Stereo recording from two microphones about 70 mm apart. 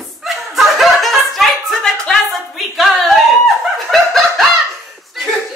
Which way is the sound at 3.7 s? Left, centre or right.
Centre.